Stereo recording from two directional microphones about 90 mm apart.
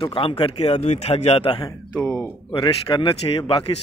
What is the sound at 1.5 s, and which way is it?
Speech, 60° left (ahead or behind).